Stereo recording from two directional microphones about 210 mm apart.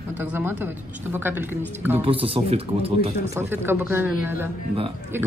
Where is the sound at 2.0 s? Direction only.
25° right (ahead or behind).